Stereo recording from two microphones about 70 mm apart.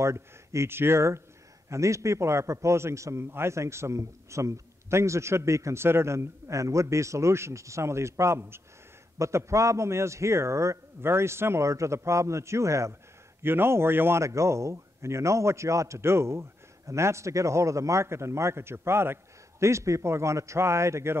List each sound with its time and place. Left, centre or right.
0.0 s a man's voice: right
13.4 s a man's voice: right